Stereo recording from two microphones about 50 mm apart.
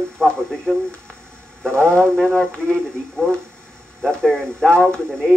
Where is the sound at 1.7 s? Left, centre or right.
Left.